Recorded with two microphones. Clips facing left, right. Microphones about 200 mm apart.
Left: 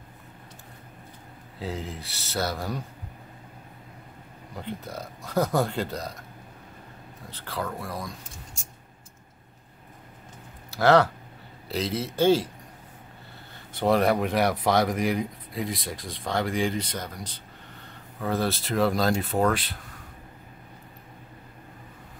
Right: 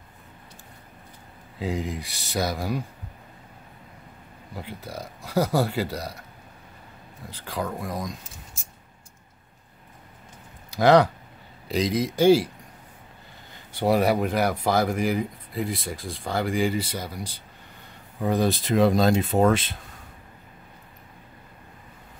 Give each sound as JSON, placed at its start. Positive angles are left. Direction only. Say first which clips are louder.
{"t": 1.6, "sound": "a man's voice", "louder": "right 5 dB", "side_deg": -15}
{"t": 4.6, "sound": "a man's voice", "louder": "left 1 dB", "side_deg": -10}
{"t": 7.2, "sound": "a man's voice", "louder": "right 2 dB", "side_deg": -10}
{"t": 10.7, "sound": "a man's voice", "louder": "right 2 dB", "side_deg": -15}
{"t": 13.7, "sound": "speech", "louder": "right 1 dB", "side_deg": -5}